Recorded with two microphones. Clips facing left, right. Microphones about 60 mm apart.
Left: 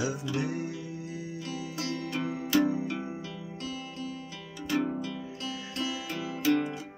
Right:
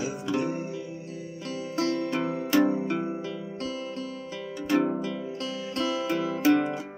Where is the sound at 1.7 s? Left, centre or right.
Right.